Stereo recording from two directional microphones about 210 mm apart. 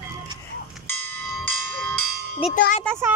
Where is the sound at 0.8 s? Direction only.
10° left (ahead or behind).